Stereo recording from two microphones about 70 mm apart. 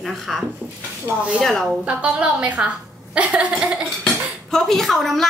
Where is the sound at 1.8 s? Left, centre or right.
Centre.